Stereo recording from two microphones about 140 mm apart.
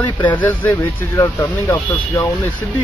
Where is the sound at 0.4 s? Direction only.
15° left (ahead or behind).